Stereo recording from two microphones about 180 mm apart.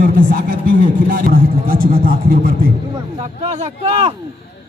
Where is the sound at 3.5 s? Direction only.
35° right (ahead or behind).